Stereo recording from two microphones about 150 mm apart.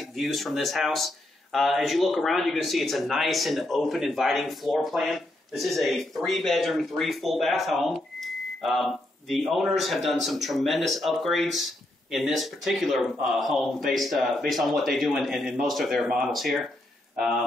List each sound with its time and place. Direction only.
0.0 s speech: centre (ahead or behind)